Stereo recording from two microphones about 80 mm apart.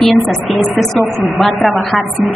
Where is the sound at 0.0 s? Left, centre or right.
Centre.